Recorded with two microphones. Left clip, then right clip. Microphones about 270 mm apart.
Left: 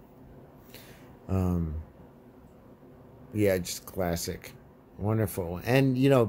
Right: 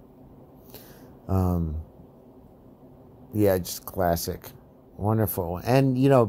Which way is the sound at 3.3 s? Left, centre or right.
Centre.